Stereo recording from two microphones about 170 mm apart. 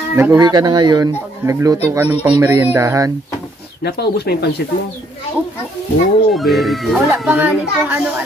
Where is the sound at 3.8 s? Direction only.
75° left (ahead or behind).